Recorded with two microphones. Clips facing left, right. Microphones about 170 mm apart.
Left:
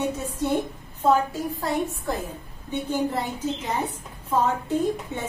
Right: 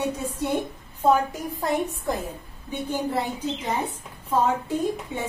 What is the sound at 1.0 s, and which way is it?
A woman's voice, 15° right (ahead or behind).